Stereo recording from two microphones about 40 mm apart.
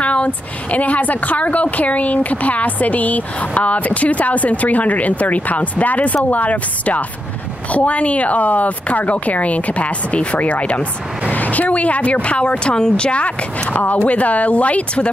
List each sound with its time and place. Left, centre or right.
0.0 s a woman's voice: left
13.2 s a woman's voice: left